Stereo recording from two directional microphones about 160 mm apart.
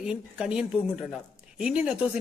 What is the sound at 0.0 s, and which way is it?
Speech, 5° right (ahead or behind).